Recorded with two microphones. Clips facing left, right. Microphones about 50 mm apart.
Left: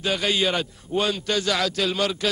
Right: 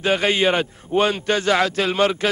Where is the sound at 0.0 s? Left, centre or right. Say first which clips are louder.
Right 5 dB; right.